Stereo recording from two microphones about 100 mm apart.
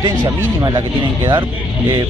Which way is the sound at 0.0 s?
40° right (ahead or behind).